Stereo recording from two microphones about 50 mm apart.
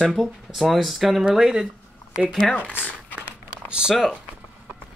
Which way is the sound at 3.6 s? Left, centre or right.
Centre.